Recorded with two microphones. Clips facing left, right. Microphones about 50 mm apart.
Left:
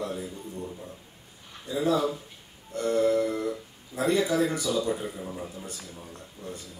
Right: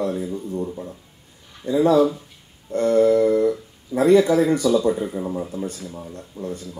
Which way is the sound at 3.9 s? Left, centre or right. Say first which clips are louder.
Right 10 dB; right.